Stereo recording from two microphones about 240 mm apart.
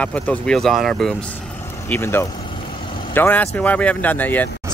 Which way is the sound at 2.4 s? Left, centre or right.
Left.